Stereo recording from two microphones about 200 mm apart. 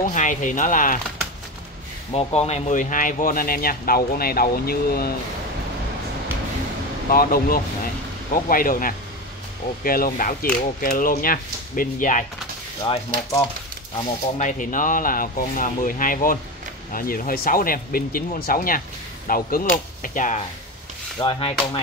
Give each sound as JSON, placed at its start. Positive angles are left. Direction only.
{"t": 0.1, "sound": "speech", "side_deg": 40}
{"t": 2.1, "sound": "speech", "side_deg": 30}
{"t": 7.1, "sound": "speech", "side_deg": 45}
{"t": 12.8, "sound": "a sound", "side_deg": 20}
{"t": 14.4, "sound": "speech", "side_deg": 40}
{"t": 21.2, "sound": "a sound", "side_deg": 30}